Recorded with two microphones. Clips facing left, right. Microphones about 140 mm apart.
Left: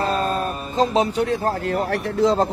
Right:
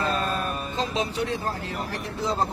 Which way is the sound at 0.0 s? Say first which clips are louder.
Left 5 dB; 35° left (ahead or behind).